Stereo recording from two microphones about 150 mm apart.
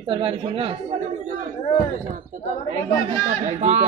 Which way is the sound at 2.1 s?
60° right (ahead or behind).